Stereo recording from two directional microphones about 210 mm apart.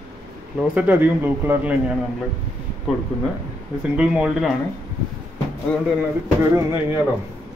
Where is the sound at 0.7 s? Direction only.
10° right (ahead or behind).